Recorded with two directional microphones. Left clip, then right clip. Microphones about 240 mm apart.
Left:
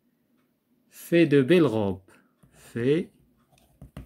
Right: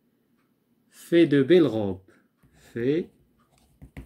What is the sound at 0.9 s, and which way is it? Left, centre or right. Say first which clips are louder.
Speech: right 1 dB; left.